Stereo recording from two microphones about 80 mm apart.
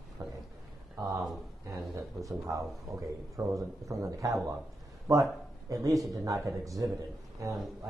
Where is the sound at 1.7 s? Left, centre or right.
Right.